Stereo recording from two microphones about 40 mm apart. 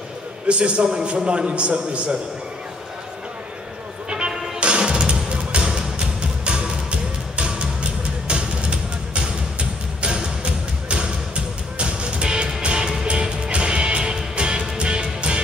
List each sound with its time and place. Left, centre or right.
0.5 s a man's voice: right
4.6 s music: right